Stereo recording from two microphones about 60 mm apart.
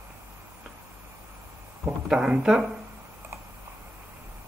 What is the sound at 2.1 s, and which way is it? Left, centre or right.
Speech, centre.